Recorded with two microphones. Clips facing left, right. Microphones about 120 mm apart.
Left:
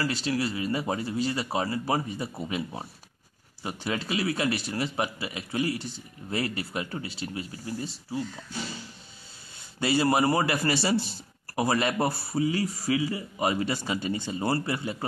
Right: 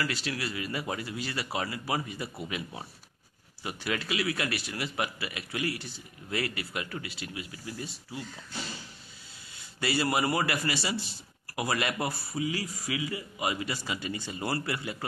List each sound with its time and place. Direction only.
0.0 s a man's voice: 30° left (ahead or behind)
3.6 s a man's voice: 25° left (ahead or behind)
9.8 s a man's voice: 25° left (ahead or behind)